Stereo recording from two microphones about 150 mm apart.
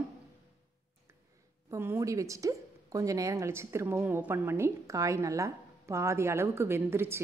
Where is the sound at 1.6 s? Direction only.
20° right (ahead or behind).